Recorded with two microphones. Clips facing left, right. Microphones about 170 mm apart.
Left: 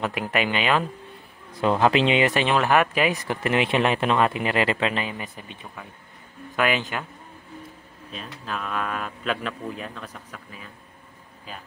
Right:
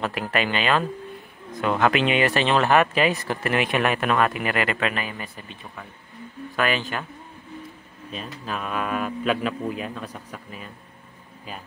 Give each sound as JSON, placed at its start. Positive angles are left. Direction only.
{"t": 0.0, "sound": "speech", "side_deg": 15}
{"t": 1.5, "sound": "speech", "side_deg": 30}
{"t": 8.1, "sound": "a man's voice", "side_deg": -5}